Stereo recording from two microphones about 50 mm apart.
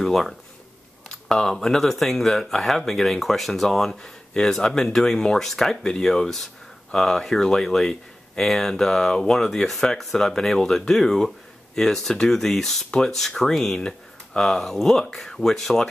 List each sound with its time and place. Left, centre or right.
0.0 s speech: centre